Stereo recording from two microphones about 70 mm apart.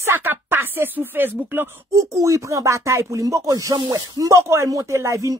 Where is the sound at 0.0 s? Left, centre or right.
Right.